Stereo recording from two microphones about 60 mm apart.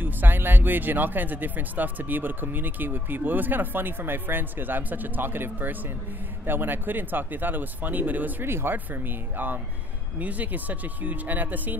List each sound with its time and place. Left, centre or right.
0.0 s speech: right